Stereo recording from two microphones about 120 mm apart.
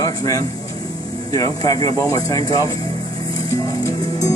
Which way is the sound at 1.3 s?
30° left (ahead or behind).